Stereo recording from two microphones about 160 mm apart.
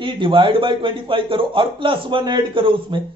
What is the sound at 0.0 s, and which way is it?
A man's voice, 30° right (ahead or behind).